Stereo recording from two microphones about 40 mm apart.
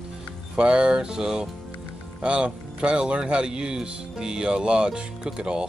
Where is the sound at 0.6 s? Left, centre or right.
Right.